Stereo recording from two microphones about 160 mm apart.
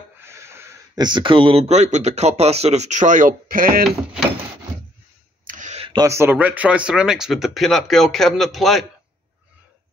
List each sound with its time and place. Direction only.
0.2 s a sound: 15° right (ahead or behind)
1.0 s speech: 30° right (ahead or behind); by 3.8 s 60° right (ahead or behind)
5.5 s camera: 45° right (ahead or behind)
5.9 s speech: 15° right (ahead or behind); by 8.8 s centre (ahead or behind)